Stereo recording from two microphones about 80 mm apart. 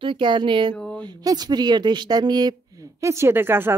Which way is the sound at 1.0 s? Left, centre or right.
Right.